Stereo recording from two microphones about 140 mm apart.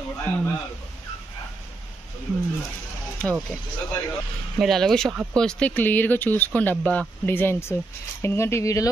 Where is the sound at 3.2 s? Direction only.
5° left (ahead or behind).